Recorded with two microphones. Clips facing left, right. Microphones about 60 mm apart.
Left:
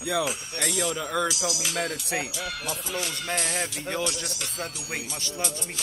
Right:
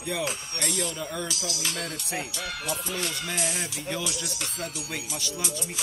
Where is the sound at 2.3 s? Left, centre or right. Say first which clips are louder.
Even; centre.